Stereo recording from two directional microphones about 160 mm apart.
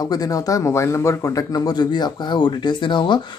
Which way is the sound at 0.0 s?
25° left (ahead or behind).